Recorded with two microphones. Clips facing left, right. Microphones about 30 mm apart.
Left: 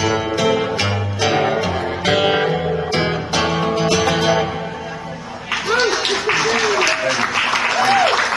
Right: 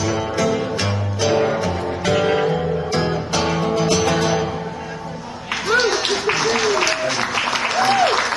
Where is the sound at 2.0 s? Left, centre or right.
Left.